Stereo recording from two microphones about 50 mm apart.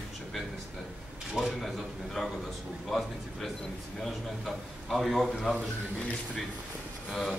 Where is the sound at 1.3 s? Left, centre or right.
Centre.